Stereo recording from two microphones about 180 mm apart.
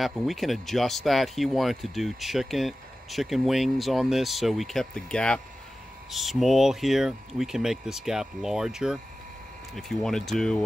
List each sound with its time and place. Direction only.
0.0 s speech: centre (ahead or behind)